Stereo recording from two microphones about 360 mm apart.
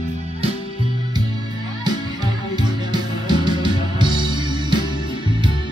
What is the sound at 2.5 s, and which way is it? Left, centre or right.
Music, centre.